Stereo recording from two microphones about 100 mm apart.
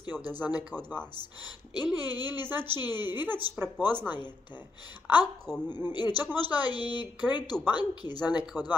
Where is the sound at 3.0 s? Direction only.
45° left (ahead or behind).